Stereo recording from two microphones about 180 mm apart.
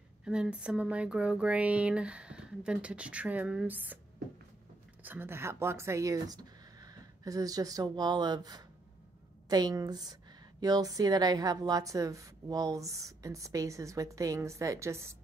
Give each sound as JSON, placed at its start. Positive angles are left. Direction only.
{"t": 0.2, "sound": "a woman's voice", "side_deg": -5}
{"t": 5.0, "sound": "a woman's voice", "side_deg": -10}